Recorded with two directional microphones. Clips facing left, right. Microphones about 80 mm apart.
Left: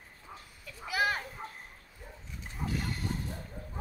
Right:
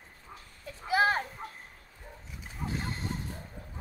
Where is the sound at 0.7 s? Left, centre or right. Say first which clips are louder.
Right 5 dB; right.